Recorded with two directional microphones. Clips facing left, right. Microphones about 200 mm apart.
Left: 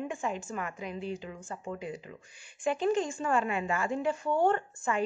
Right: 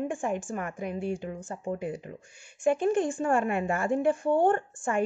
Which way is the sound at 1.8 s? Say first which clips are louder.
Right 5 dB; 55° right (ahead or behind).